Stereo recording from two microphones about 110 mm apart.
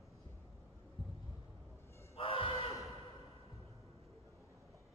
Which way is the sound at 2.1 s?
55° left (ahead or behind).